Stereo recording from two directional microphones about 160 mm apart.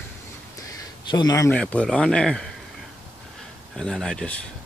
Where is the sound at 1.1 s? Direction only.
25° left (ahead or behind).